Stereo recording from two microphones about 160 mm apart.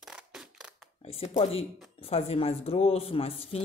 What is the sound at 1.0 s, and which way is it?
Speech, 40° left (ahead or behind).